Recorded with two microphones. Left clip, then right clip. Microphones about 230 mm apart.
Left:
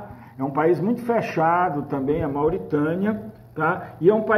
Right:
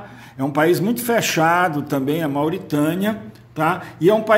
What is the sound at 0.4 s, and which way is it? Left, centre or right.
A man's voice, right.